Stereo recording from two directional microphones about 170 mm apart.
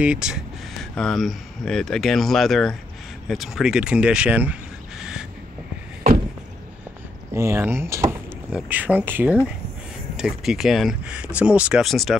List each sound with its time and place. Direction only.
0.0 s speech: 5° right (ahead or behind)
7.3 s speech: 15° right (ahead or behind); by 12.2 s centre (ahead or behind)